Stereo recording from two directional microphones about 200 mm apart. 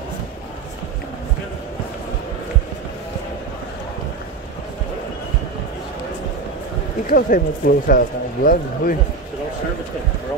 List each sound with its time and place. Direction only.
7.1 s speech: 45° left (ahead or behind)